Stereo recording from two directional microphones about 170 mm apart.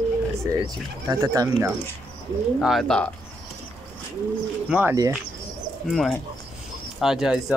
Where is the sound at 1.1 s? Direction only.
20° right (ahead or behind).